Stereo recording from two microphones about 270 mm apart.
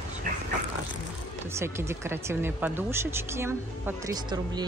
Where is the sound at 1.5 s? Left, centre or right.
Centre.